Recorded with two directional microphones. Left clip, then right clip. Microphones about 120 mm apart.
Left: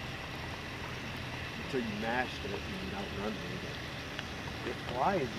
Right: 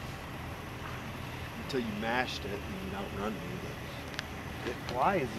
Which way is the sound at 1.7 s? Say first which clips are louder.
Right 2 dB; 30° right (ahead or behind).